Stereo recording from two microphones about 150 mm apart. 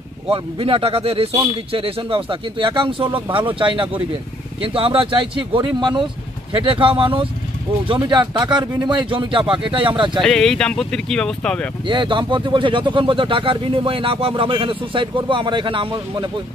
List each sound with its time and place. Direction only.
0.3 s speech: 35° right (ahead or behind)
10.2 s speech: 5° left (ahead or behind)
11.9 s speech: 30° right (ahead or behind)